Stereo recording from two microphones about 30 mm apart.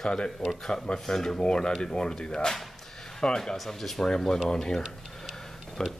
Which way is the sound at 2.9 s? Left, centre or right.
Centre.